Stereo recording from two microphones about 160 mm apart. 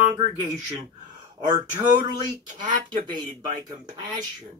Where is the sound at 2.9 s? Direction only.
30° right (ahead or behind).